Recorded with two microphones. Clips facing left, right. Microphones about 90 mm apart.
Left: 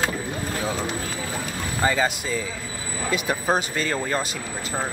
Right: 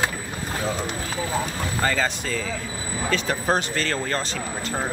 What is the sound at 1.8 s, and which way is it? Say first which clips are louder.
A man's voice: left 2 dB; 10° left (ahead or behind).